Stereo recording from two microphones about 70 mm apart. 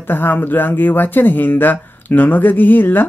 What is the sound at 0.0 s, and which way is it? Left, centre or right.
Speech, left.